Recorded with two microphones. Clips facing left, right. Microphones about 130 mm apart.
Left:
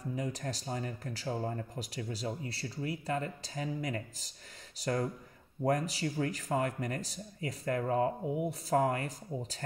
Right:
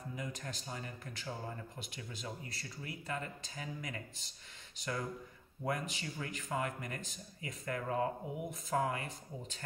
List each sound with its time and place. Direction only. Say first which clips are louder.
0.1 s speech: left 7 dB; 35° left (ahead or behind)